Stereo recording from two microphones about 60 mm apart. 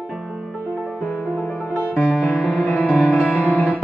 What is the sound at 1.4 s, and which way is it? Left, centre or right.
Music, left.